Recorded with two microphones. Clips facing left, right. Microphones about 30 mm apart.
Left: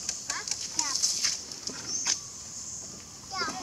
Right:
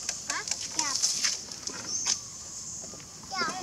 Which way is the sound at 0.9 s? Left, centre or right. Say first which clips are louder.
Even; centre.